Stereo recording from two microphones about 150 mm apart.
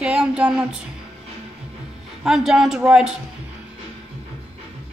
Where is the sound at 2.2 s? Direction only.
5° right (ahead or behind).